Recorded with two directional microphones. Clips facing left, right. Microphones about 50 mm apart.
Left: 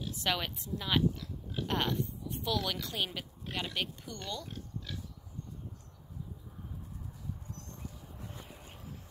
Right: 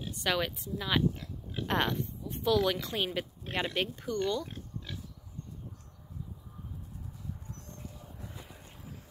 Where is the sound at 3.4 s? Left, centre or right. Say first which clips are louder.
Right 4 dB; right.